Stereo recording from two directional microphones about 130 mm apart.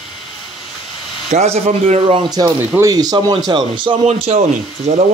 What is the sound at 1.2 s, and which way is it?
Speech, 60° right (ahead or behind).